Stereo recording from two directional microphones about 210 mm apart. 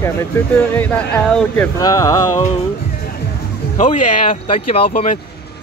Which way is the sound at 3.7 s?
40° left (ahead or behind).